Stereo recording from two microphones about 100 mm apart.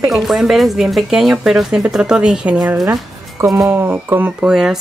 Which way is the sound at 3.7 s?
20° right (ahead or behind).